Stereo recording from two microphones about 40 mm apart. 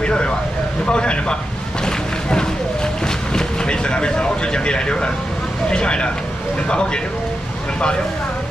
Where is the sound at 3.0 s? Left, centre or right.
Centre.